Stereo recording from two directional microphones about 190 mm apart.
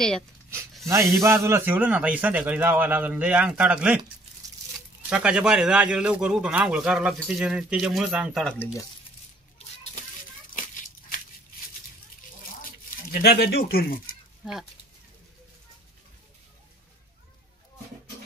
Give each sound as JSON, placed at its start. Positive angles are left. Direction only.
{"t": 1.2, "sound": "a man's voice", "side_deg": -15}
{"t": 5.1, "sound": "a man's voice", "side_deg": -5}
{"t": 13.1, "sound": "speech", "side_deg": 55}
{"t": 14.4, "sound": "speech", "side_deg": 0}